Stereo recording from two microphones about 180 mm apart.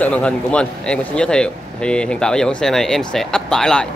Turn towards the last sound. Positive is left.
turn(degrees=5)  # may be behind; listen again after turning